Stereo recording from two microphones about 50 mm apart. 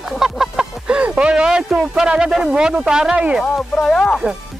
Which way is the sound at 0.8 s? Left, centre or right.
Right.